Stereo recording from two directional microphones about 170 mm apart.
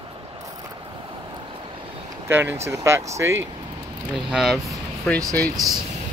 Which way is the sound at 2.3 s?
15° right (ahead or behind).